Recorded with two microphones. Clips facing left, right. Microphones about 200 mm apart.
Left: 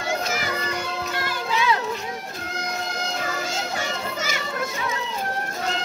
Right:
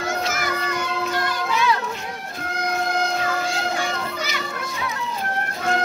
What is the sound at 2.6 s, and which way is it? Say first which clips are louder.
Music: right 8 dB; 55° right (ahead or behind).